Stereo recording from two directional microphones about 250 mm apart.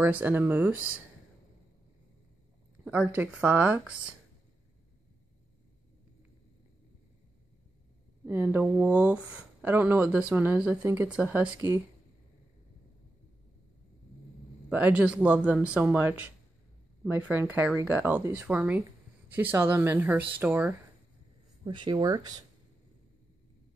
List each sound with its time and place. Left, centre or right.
0.0 s speech: centre
2.8 s speech: centre
8.3 s speech: centre
14.7 s speech: centre
21.6 s speech: centre